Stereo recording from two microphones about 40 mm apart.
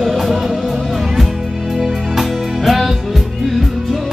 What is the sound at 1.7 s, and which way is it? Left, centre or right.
Music, centre.